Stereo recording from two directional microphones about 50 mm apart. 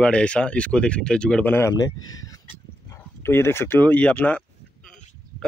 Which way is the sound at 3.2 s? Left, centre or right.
Left.